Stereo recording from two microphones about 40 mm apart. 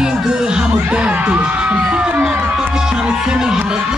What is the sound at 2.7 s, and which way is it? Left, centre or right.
Music, centre.